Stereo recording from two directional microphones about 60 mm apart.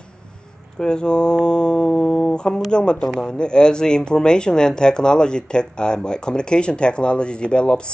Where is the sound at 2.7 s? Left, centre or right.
Centre.